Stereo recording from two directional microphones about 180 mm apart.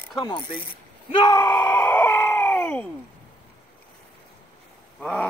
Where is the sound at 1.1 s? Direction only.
20° left (ahead or behind).